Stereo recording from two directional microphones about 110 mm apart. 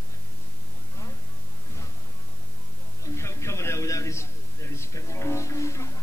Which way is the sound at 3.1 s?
25° left (ahead or behind).